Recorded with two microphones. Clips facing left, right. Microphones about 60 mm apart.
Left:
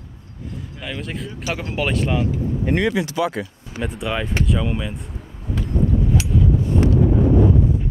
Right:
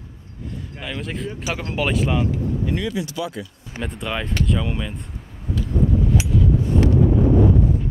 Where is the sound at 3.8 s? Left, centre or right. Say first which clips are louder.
Left 2 dB; centre.